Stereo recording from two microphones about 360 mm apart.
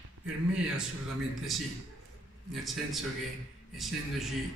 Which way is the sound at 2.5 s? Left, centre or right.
Centre.